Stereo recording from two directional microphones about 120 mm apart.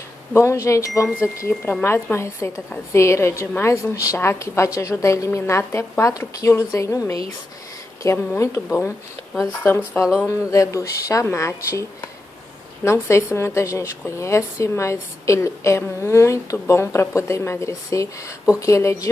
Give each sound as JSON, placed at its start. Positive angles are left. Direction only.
{"t": 0.3, "sound": "a woman's voice", "side_deg": 25}
{"t": 10.2, "sound": "a woman's voice", "side_deg": 25}
{"t": 12.8, "sound": "a woman's voice", "side_deg": 25}